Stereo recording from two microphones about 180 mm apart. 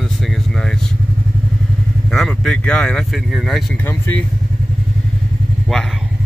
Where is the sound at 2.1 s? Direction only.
Centre (ahead or behind).